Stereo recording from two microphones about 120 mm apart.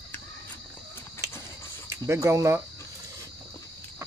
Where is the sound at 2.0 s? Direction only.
25° right (ahead or behind).